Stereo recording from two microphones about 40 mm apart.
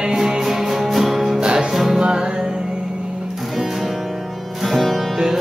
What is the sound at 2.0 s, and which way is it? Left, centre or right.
Music, centre.